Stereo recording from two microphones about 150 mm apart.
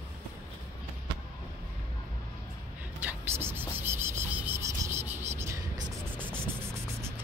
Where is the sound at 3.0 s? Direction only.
15° right (ahead or behind).